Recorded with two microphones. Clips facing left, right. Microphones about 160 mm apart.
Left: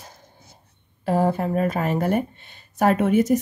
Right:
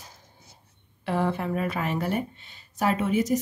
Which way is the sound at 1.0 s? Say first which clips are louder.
Left 5 dB; 40° left (ahead or behind).